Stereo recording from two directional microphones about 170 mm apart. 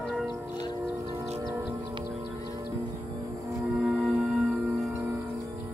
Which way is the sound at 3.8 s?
10° right (ahead or behind).